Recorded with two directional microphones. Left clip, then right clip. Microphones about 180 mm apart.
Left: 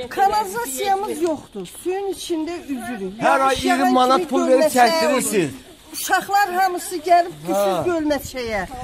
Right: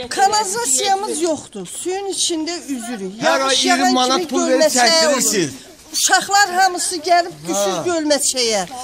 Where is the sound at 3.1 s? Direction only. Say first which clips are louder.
Right 1 dB; 35° left (ahead or behind).